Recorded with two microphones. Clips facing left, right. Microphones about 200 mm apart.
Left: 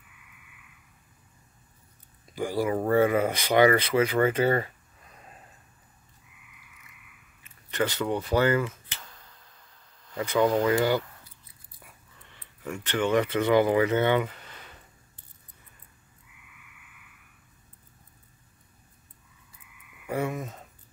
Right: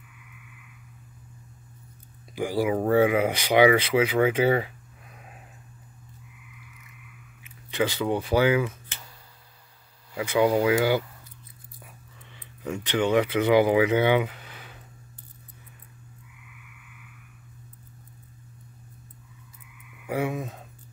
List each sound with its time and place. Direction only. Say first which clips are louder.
2.3 s speech: right 2 dB; 5° right (ahead or behind)
7.7 s speech: right 2 dB; 10° right (ahead or behind)
10.1 s speech: right 2 dB; 10° right (ahead or behind)
12.6 s speech: right 2 dB; 15° right (ahead or behind)
20.1 s a sound: right 2 dB; 10° right (ahead or behind)